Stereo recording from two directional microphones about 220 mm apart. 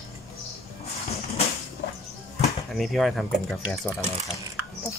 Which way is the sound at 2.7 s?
Centre (ahead or behind).